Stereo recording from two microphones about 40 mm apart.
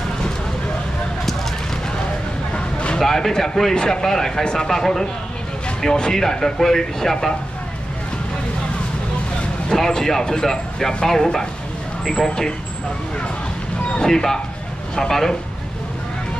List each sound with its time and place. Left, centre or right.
2.5 s vehicle: left
3.0 s speech: centre
9.7 s a man's voice: centre
13.9 s speech: centre